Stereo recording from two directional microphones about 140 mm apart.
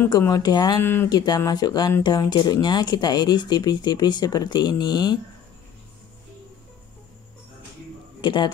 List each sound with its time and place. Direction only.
0.3 s speech: 30° left (ahead or behind)
8.2 s a man's voice: 35° left (ahead or behind)